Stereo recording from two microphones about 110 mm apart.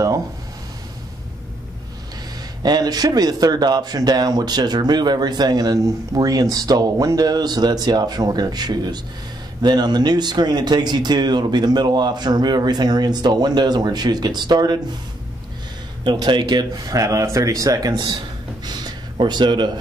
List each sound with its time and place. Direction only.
2.6 s a man's voice: 35° right (ahead or behind)
16.0 s a man's voice: 40° right (ahead or behind)
18.7 s a sound: 40° right (ahead or behind)